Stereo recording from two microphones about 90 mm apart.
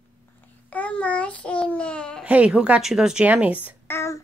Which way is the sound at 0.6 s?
15° left (ahead or behind).